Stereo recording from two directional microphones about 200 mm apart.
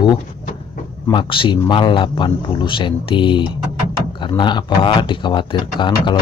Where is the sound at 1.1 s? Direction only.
25° left (ahead or behind).